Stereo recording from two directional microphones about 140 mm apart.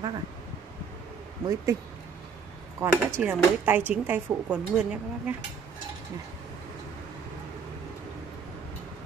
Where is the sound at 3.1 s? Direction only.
15° right (ahead or behind).